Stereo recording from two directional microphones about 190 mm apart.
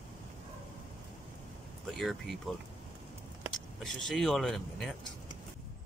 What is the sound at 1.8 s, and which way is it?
Speech, centre (ahead or behind).